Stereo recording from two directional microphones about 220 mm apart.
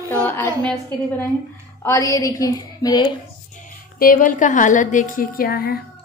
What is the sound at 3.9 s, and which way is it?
A woman's voice, 40° left (ahead or behind).